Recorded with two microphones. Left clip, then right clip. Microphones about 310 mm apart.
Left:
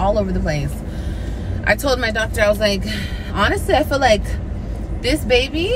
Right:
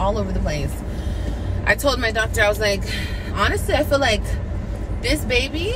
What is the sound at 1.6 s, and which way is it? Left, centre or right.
Speech, centre.